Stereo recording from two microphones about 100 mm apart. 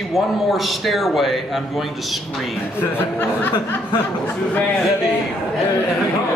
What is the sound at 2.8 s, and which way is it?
Speech, 20° left (ahead or behind).